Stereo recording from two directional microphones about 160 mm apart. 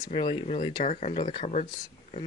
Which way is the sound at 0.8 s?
45° left (ahead or behind).